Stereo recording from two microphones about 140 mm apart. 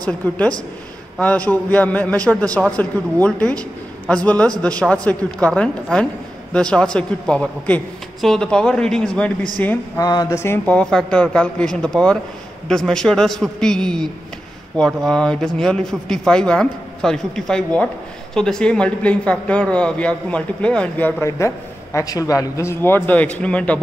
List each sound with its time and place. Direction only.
0.0 s a man's voice: 10° left (ahead or behind)
9.9 s a man's voice: 25° left (ahead or behind); by 21.1 s 10° left (ahead or behind)
21.2 s speech: 20° left (ahead or behind)